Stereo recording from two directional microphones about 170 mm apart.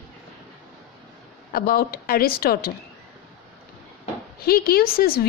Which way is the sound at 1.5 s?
65° left (ahead or behind).